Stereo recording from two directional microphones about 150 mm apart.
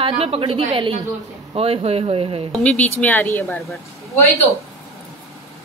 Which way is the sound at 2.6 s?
10° left (ahead or behind).